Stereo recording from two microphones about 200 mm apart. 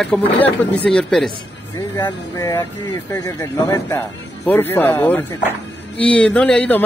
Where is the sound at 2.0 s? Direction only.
15° left (ahead or behind).